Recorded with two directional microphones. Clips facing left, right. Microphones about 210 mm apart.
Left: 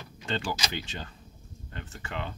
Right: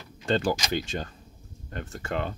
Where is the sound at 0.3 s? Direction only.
45° right (ahead or behind).